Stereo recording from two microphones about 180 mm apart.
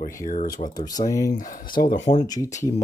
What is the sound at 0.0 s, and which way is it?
Speech, 50° left (ahead or behind).